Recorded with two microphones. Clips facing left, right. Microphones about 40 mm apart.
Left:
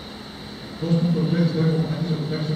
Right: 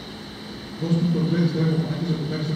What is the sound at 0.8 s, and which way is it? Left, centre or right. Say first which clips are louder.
A man's voice: left 1 dB; centre.